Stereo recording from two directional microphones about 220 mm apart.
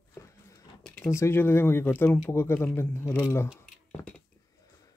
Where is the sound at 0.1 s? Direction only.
15° left (ahead or behind).